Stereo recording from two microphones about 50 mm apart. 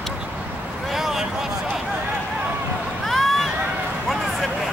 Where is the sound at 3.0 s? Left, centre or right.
Centre.